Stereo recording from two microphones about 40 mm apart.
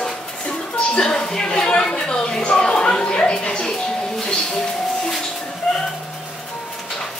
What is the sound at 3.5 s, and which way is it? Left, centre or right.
Music, centre.